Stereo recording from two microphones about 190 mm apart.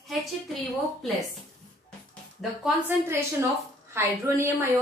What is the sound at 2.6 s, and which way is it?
A woman's voice, 10° right (ahead or behind).